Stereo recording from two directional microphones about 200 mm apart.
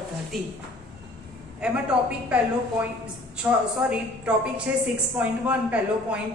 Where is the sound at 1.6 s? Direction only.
5° right (ahead or behind).